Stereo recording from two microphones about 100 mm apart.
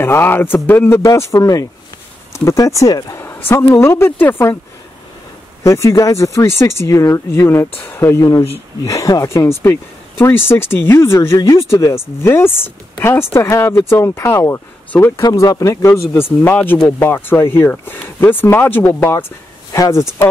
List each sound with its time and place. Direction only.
0.0 s speech: 25° left (ahead or behind)
5.6 s speech: 30° left (ahead or behind)